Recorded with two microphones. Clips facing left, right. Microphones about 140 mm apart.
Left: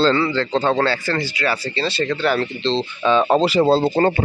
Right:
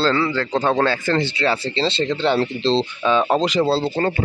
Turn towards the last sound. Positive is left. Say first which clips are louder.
# left 4 dB
turn(degrees=50)  # may be behind; listen again after turning